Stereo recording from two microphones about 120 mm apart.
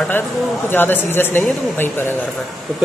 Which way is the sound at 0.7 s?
15° left (ahead or behind).